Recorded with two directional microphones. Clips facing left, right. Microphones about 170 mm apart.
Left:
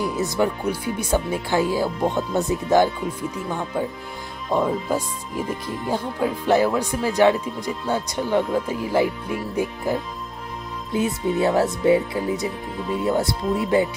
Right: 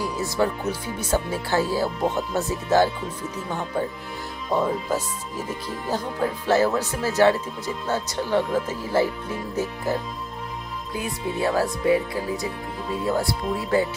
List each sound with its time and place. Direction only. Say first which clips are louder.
0.0 s speech: left 2 dB; 20° left (ahead or behind)